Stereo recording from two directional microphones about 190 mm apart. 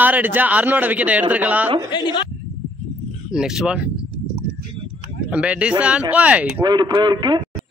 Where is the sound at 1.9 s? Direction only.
25° left (ahead or behind).